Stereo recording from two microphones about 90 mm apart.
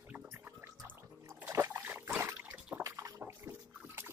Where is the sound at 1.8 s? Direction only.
20° right (ahead or behind).